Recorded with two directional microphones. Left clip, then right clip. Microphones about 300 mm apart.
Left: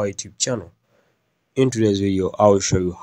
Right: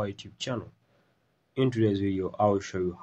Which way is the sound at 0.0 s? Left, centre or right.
Left.